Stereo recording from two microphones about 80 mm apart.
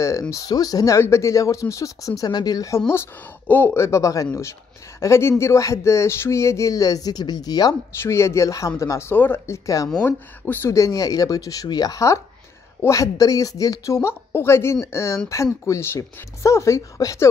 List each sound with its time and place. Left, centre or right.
0.3 s speech: left
0.9 s speech: left
2.9 s speech: left
8.0 s speech: left
10.7 s speech: left